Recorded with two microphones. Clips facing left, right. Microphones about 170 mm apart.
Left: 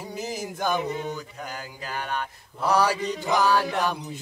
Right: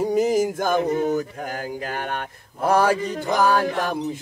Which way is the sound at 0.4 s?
50° right (ahead or behind).